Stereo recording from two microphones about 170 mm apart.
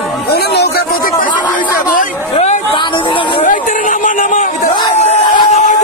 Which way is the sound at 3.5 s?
50° left (ahead or behind).